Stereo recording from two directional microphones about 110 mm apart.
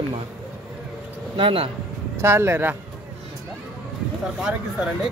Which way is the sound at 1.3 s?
55° right (ahead or behind).